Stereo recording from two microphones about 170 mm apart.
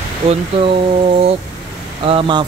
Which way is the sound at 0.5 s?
35° right (ahead or behind).